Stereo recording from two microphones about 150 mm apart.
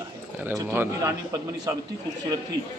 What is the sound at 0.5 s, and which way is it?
A man's voice, 20° right (ahead or behind).